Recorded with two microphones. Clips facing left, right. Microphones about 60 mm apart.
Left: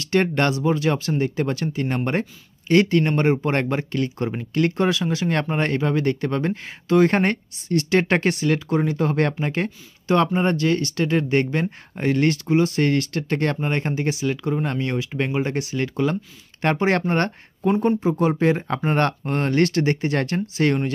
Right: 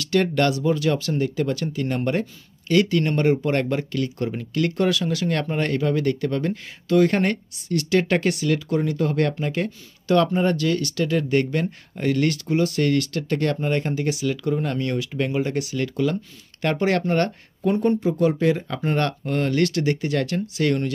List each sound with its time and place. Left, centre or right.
0.0 s speech: left